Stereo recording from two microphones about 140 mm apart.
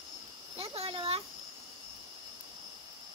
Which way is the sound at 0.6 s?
45° right (ahead or behind).